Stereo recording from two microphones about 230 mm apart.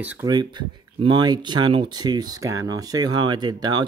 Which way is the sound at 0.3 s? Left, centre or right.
Centre.